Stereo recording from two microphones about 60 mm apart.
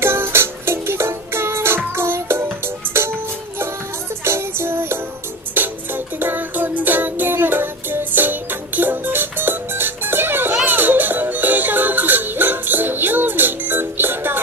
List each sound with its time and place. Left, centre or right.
0.0 s music: right